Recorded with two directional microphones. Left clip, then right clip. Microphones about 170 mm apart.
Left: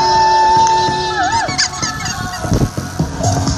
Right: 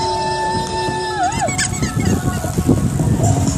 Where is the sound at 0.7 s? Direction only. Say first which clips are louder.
Left 7 dB; 40° left (ahead or behind).